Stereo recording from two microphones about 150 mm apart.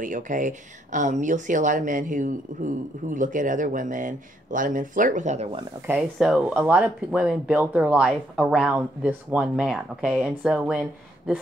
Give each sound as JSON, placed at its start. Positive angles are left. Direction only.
{"t": 0.0, "sound": "speech", "side_deg": -60}
{"t": 5.9, "sound": "speech", "side_deg": -5}